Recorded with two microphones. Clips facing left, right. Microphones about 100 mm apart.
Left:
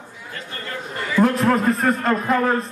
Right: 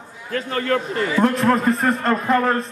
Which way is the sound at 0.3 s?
65° right (ahead or behind).